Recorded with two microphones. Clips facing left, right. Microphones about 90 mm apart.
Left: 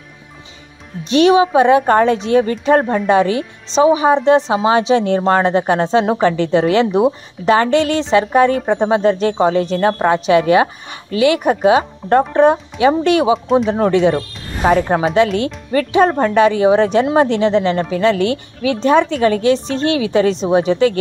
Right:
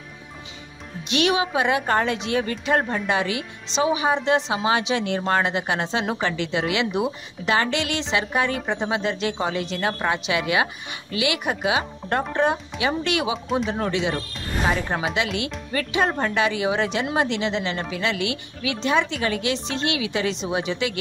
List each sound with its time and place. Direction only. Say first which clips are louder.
1.0 s a woman's voice: left 11 dB; 35° left (ahead or behind)